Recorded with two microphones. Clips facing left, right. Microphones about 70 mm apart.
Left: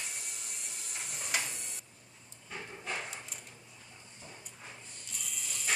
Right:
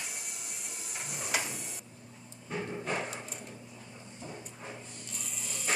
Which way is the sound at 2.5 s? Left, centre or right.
Right.